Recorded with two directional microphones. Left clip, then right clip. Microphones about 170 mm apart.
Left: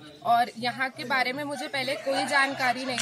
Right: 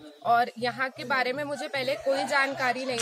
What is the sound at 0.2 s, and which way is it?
Speech, 15° right (ahead or behind).